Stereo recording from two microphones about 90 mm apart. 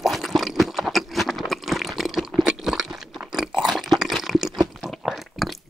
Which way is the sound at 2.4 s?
5° right (ahead or behind).